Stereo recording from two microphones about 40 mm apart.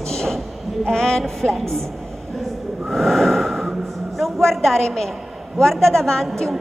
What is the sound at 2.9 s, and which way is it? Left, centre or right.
Whistling, centre.